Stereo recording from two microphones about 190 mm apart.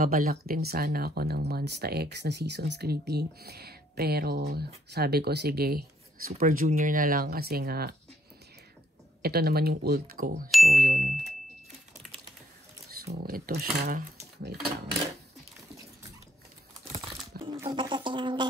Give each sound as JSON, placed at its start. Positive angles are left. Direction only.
{"t": 0.0, "sound": "speech", "side_deg": -50}
{"t": 9.2, "sound": "speech", "side_deg": -55}
{"t": 10.5, "sound": "ding", "side_deg": 0}
{"t": 10.8, "sound": "speech", "side_deg": -45}
{"t": 13.2, "sound": "speech", "side_deg": -50}
{"t": 16.8, "sound": "crumpling", "side_deg": -30}
{"t": 17.6, "sound": "speech", "side_deg": -25}